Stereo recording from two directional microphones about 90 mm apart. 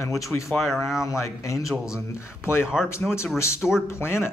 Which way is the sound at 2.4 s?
25° left (ahead or behind).